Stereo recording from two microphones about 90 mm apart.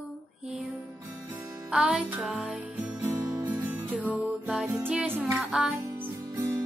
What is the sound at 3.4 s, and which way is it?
Music, 20° right (ahead or behind).